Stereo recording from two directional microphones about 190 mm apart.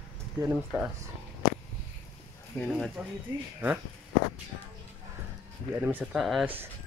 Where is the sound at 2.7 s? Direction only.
5° right (ahead or behind).